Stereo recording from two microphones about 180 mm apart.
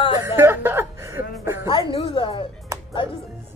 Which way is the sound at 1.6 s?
25° left (ahead or behind).